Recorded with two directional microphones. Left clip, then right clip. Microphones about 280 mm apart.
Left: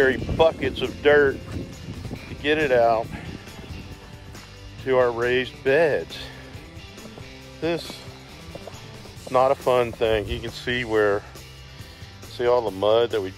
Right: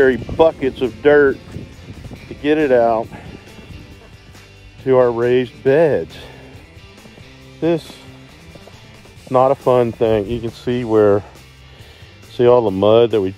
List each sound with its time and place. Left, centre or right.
0.0 s speech: right
2.4 s speech: right
4.8 s speech: right
7.6 s speech: right
9.3 s speech: right
12.4 s speech: right